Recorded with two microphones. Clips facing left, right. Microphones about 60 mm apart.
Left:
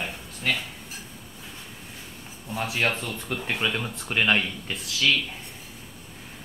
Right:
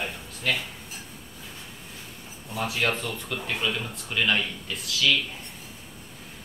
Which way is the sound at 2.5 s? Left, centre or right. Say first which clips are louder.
Left 1 dB; left.